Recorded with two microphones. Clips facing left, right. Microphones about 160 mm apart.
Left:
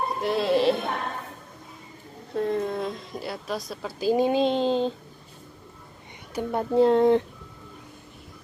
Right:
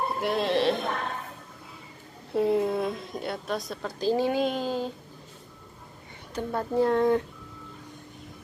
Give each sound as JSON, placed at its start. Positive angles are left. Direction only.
{"t": 0.2, "sound": "speech", "side_deg": 0}
{"t": 2.3, "sound": "a woman's voice", "side_deg": -5}
{"t": 6.3, "sound": "speech", "side_deg": 20}